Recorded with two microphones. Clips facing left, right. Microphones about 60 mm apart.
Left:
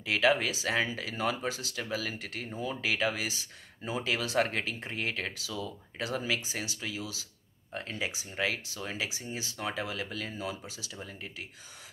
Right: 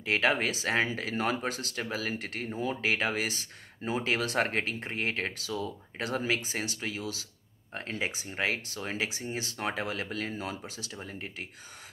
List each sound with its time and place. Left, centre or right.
0.0 s speech: right